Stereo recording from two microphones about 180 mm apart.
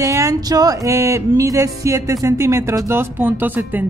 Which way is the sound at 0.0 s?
20° right (ahead or behind).